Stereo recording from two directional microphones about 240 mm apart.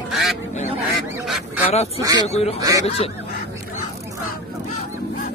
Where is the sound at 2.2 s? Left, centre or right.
Left.